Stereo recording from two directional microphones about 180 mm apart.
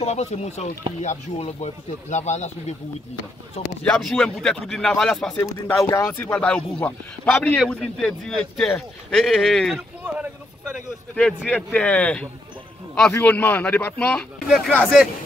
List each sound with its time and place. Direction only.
0.0 s speech: 40° left (ahead or behind)
3.8 s speech: 5° left (ahead or behind)